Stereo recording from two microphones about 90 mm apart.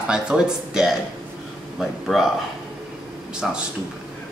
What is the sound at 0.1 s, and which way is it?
Speech, 10° right (ahead or behind).